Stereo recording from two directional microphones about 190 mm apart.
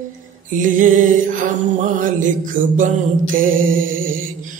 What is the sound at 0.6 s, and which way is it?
Music, 45° right (ahead or behind).